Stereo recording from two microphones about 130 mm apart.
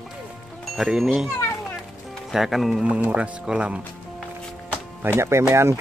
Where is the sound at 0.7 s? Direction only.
5° right (ahead or behind).